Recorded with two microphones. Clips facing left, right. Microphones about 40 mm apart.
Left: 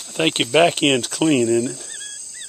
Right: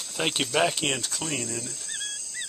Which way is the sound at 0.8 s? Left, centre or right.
Left.